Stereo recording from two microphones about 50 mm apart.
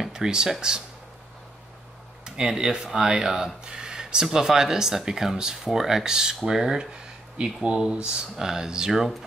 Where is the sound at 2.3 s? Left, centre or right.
Centre.